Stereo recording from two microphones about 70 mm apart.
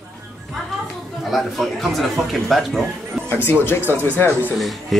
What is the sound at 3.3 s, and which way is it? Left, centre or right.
Speech, left.